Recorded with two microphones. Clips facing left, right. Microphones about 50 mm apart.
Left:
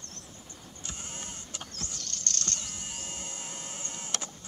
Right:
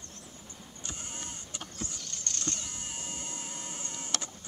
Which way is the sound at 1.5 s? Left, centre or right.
Centre.